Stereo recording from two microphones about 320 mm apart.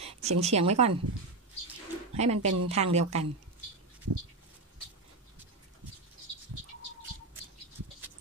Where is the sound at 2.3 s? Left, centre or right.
Right.